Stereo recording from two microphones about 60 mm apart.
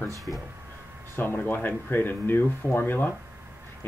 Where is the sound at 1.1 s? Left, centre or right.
Left.